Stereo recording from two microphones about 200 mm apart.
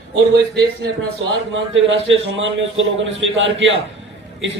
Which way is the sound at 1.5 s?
70° right (ahead or behind).